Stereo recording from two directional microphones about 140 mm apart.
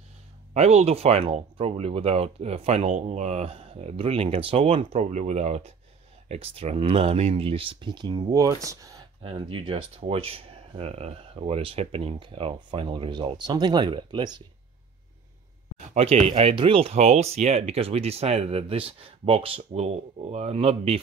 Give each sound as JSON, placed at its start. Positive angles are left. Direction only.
{"t": 0.6, "sound": "speech", "side_deg": -50}
{"t": 5.1, "sound": "speech", "side_deg": -55}
{"t": 9.2, "sound": "speech", "side_deg": -40}
{"t": 15.9, "sound": "speech", "side_deg": -50}